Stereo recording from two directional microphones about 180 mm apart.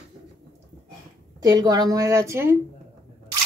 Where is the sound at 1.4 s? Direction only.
20° right (ahead or behind).